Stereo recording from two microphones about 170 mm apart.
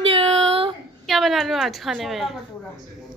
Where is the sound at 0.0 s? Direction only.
35° right (ahead or behind).